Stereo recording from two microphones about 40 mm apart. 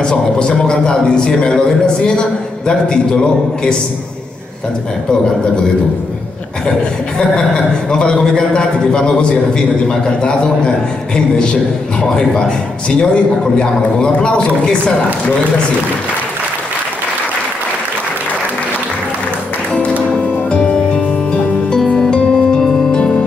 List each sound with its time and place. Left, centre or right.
0.0 s a man's voice: left
7.2 s a man's voice: centre
12.0 s a man's voice: centre
19.7 s music: left; by 22.8 s centre